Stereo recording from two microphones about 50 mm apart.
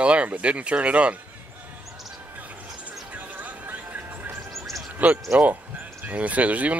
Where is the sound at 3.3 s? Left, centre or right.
Right.